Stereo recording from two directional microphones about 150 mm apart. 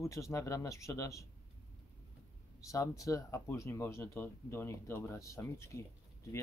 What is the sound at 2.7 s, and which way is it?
Speech, 20° left (ahead or behind).